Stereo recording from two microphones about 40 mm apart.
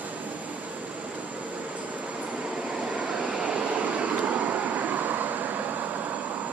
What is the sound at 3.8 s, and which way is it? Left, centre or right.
Vehicle, right.